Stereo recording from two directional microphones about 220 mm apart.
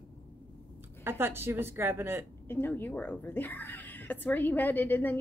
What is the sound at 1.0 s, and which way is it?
A woman's voice, 10° right (ahead or behind).